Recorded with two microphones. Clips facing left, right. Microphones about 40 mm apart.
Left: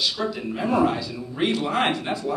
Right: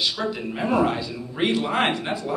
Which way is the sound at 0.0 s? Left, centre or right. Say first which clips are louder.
Even; centre.